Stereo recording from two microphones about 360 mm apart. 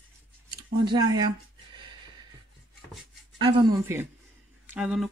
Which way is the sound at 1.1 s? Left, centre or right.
Centre.